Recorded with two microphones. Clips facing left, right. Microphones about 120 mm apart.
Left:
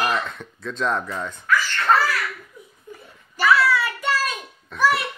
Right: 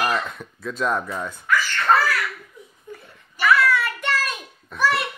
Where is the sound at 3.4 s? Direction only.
5° left (ahead or behind).